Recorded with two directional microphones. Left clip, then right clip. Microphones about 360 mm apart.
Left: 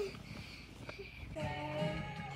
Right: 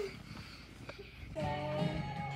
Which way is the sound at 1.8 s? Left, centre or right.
Right.